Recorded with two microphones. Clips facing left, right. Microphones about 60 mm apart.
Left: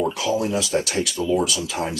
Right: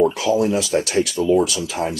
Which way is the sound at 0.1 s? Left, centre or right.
Right.